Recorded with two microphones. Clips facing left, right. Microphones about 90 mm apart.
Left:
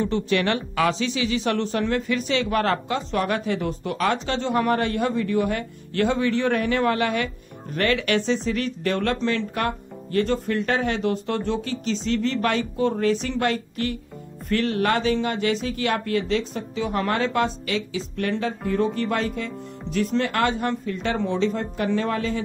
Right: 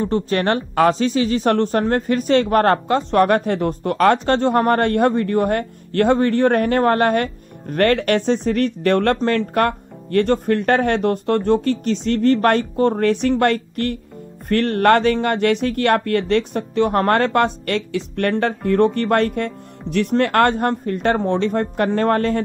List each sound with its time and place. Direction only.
0.0 s speech: 40° right (ahead or behind)